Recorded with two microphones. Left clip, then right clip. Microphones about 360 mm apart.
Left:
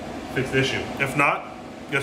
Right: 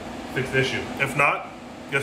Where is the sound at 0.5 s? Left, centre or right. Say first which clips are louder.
Even; centre.